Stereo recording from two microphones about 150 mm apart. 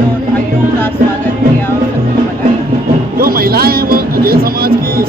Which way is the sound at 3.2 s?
80° right.